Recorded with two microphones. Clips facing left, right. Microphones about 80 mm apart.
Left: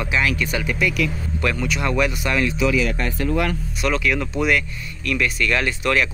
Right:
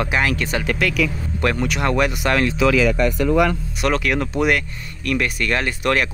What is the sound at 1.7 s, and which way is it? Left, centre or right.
Speech, right.